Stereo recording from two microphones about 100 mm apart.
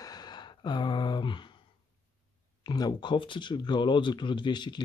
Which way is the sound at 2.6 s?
40° left (ahead or behind).